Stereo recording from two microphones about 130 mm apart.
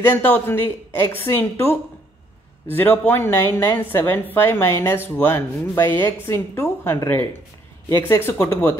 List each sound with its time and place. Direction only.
0.0 s a woman's voice: 15° left (ahead or behind)